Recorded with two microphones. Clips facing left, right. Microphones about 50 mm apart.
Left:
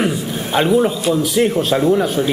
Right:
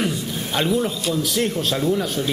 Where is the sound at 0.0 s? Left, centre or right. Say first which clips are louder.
Left 5 dB; centre.